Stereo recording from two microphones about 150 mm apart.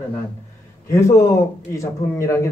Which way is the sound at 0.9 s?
20° left (ahead or behind).